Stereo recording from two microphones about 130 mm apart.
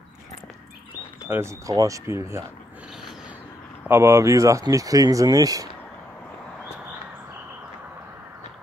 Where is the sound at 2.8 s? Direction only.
5° right (ahead or behind).